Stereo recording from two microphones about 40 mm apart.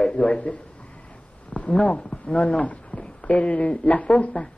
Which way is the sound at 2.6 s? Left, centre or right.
Left.